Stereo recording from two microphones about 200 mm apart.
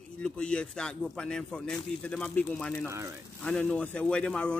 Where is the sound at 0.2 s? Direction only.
5° left (ahead or behind).